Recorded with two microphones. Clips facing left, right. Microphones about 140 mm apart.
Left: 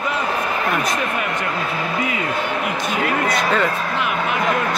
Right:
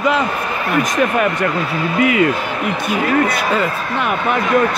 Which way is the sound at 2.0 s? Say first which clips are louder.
Right 13 dB; 70° right (ahead or behind).